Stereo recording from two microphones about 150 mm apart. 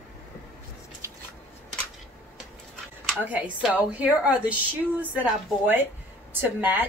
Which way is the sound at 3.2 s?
10° right (ahead or behind).